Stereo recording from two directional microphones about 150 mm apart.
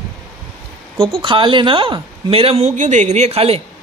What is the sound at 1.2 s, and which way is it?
Speech, 35° right (ahead or behind).